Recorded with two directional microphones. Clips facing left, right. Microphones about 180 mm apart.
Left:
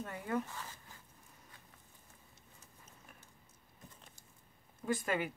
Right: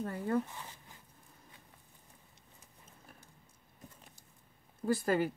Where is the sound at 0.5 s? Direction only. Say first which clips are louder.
Even; 15° right (ahead or behind).